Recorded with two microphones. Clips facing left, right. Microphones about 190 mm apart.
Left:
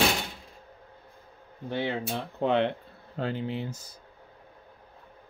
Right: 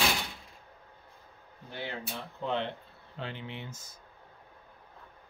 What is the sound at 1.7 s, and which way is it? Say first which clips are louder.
Speech: left 10 dB; 75° left (ahead or behind).